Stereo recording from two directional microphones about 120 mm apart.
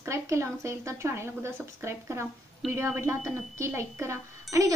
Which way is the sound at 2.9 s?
25° right (ahead or behind).